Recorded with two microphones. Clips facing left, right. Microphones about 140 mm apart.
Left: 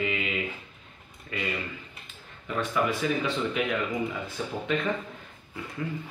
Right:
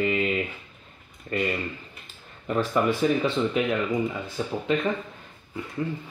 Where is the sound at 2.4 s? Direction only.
35° right (ahead or behind).